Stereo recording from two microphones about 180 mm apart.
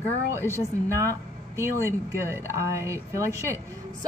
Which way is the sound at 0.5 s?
15° left (ahead or behind).